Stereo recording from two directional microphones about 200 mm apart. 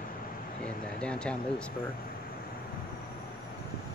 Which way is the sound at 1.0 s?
5° left (ahead or behind).